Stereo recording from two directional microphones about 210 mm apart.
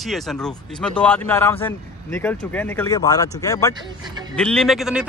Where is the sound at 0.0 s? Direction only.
Centre (ahead or behind).